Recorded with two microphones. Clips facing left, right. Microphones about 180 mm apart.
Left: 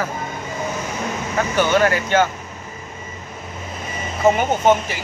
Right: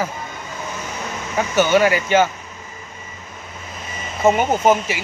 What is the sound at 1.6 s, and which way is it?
Speech, 5° right (ahead or behind).